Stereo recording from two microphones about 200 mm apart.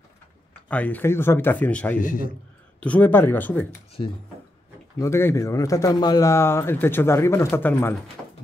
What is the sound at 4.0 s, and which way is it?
Speech, 30° left (ahead or behind).